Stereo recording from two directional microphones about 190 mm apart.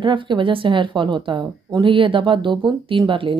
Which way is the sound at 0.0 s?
25° right (ahead or behind).